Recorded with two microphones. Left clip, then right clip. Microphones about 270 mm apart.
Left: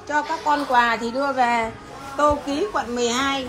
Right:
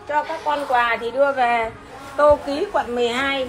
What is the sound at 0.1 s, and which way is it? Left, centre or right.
A woman's voice, centre.